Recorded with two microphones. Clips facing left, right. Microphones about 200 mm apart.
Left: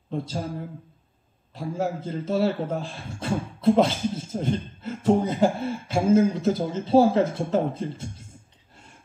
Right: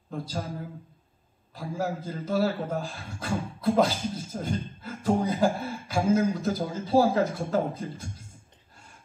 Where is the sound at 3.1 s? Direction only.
25° left (ahead or behind).